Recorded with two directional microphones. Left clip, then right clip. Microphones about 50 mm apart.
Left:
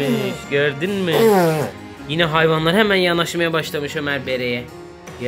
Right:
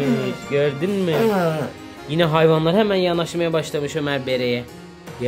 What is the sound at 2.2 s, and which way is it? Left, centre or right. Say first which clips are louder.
Speech: even; right.